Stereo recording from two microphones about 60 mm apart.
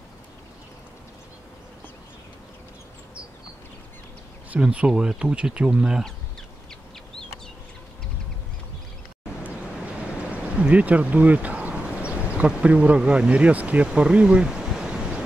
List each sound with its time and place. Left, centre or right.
4.5 s speech: right
10.3 s a sound: right
12.6 s speech: centre
13.8 s pink noise: centre